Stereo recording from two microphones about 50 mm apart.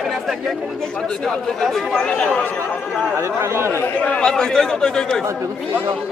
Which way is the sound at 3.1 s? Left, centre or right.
Right.